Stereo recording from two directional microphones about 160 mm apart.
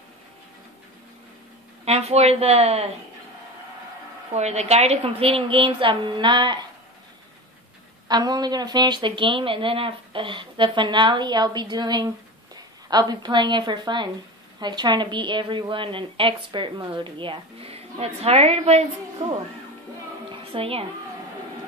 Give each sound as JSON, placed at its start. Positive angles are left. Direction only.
{"t": 1.9, "sound": "speech", "side_deg": -40}
{"t": 4.3, "sound": "speech", "side_deg": -45}
{"t": 8.1, "sound": "speech", "side_deg": -25}
{"t": 20.2, "sound": "music", "side_deg": -35}